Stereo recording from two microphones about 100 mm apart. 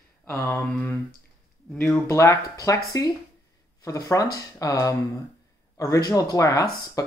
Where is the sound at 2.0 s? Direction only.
30° left (ahead or behind).